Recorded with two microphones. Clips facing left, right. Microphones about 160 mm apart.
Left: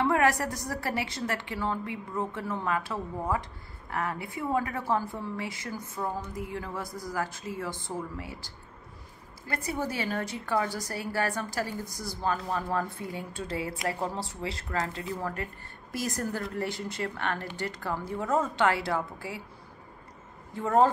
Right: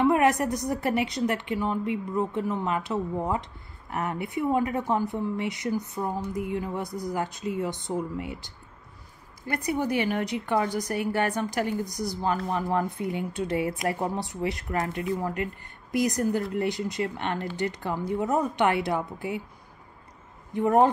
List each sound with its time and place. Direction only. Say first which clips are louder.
0.0 s a woman's voice: right 4 dB; 20° right (ahead or behind)
20.5 s a woman's voice: right 3 dB; 20° right (ahead or behind)